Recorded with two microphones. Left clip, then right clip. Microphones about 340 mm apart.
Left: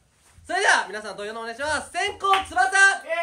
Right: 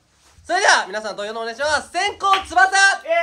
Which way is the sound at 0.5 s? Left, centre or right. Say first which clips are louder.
Right 5 dB; centre.